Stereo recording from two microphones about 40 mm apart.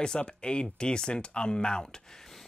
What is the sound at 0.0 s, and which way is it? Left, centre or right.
Speech, left.